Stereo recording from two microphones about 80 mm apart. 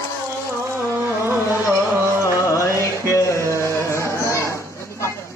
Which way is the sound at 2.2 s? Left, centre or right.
Left.